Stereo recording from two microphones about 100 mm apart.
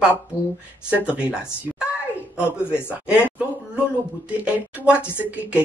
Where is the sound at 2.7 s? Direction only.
25° left (ahead or behind).